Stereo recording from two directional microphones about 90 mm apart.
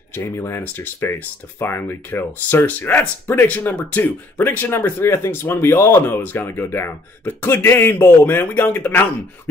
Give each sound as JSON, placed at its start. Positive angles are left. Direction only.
{"t": 0.1, "sound": "speech", "side_deg": 30}